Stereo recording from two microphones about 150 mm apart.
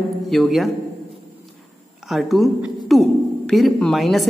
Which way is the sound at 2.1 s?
Centre (ahead or behind).